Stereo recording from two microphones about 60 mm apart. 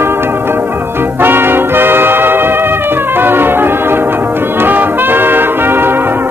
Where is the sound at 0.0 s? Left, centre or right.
Right.